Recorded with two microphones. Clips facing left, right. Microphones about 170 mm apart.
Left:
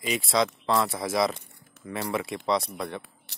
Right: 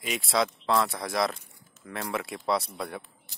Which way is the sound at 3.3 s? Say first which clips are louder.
Left 2 dB; 70° left (ahead or behind).